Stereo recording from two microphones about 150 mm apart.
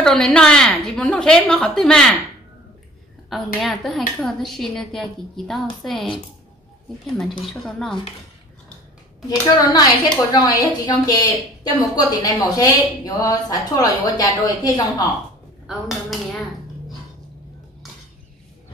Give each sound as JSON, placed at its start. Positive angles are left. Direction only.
{"t": 0.0, "sound": "a woman's voice", "side_deg": 5}
{"t": 3.3, "sound": "a woman's voice", "side_deg": 0}
{"t": 7.2, "sound": "a woman's voice", "side_deg": 5}
{"t": 9.6, "sound": "a woman's voice", "side_deg": 25}
{"t": 15.6, "sound": "a woman's voice", "side_deg": 0}